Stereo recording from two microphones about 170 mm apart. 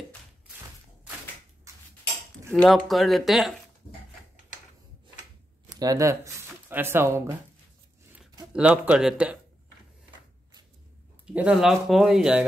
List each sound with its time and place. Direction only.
2.5 s speech: centre (ahead or behind)
5.7 s speech: 20° right (ahead or behind)
8.5 s speech: 5° right (ahead or behind)
11.3 s speech: 5° right (ahead or behind)